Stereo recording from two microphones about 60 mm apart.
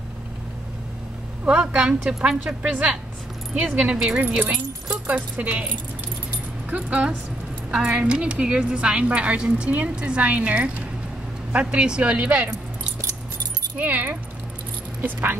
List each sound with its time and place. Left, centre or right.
1.4 s a woman's voice: centre
5.0 s a woman's voice: right
6.7 s a woman's voice: right
13.7 s a woman's voice: right